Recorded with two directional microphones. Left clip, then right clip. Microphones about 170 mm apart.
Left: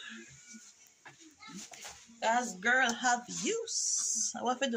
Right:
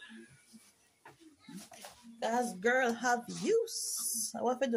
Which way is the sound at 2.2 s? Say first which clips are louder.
Left 2 dB; 45° right (ahead or behind).